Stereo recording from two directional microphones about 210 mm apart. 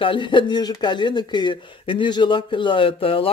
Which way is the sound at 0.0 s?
25° left (ahead or behind).